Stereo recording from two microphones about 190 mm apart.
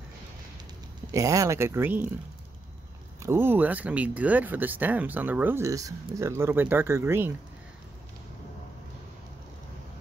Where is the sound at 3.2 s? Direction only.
10° right (ahead or behind).